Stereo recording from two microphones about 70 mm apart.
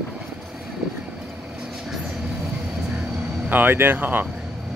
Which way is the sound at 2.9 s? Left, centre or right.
Centre.